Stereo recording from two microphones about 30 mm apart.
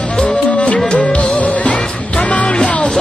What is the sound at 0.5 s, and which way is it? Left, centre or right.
Music, left.